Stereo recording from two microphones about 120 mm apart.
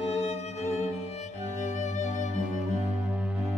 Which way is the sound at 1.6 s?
85° left.